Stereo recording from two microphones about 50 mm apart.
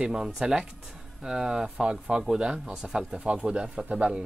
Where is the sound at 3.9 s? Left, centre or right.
Right.